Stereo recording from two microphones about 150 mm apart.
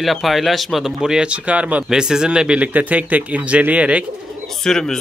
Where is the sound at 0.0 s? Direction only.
Centre (ahead or behind).